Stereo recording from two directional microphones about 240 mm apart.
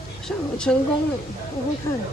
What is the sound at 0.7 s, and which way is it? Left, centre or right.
Speech, centre.